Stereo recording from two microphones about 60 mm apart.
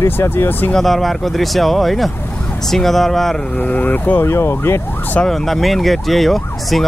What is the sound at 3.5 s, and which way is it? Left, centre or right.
Speech, left.